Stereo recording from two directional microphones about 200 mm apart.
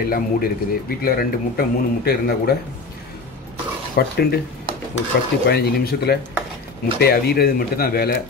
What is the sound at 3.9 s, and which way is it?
Speech, 50° left (ahead or behind).